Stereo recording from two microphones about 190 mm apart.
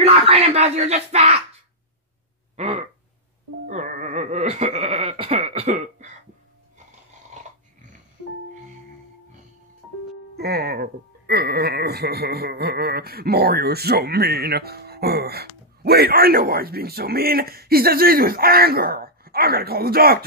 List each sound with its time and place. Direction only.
0.0 s speech: 30° right (ahead or behind)
2.5 s a sound: 35° right (ahead or behind)
3.6 s goat: 40° right (ahead or behind)
10.3 s speech: 55° right (ahead or behind)